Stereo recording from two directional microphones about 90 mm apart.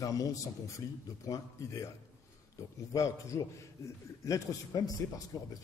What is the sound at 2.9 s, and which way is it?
A man's voice, 35° left (ahead or behind).